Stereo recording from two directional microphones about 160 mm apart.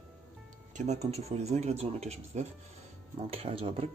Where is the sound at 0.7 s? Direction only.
45° right (ahead or behind).